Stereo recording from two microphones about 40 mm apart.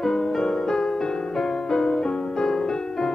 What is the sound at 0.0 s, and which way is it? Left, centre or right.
Music, centre.